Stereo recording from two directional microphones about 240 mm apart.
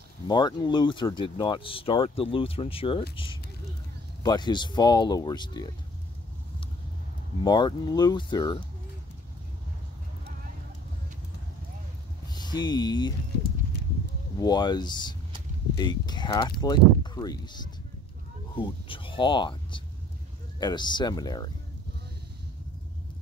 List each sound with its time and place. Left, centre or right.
0.3 s speech: centre
7.4 s speech: centre
12.3 s speech: centre
14.4 s speech: centre